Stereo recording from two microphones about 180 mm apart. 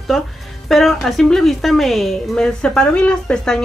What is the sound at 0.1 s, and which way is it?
A woman's voice, centre (ahead or behind).